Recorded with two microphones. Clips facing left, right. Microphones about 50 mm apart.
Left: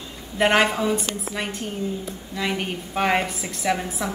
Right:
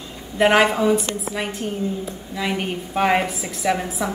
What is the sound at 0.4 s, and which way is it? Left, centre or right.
A woman's voice, centre.